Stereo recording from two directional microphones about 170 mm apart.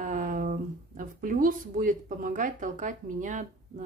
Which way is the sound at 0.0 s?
50° right (ahead or behind).